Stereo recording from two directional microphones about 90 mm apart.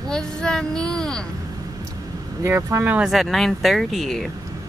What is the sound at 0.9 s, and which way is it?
Speech, 5° left (ahead or behind).